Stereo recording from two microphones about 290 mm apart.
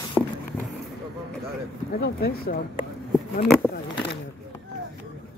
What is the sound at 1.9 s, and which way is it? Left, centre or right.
Speech, left.